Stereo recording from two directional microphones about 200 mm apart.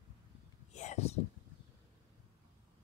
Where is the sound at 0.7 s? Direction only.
35° left (ahead or behind).